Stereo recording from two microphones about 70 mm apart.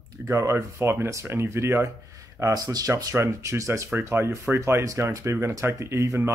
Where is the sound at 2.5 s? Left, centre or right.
Right.